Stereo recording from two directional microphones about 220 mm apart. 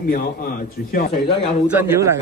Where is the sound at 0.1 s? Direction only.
40° left (ahead or behind).